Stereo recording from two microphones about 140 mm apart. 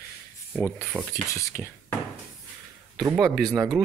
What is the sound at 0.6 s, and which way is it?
Speech, 15° left (ahead or behind).